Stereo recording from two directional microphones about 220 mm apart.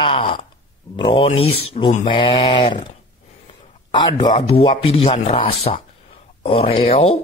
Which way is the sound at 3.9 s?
20° left (ahead or behind).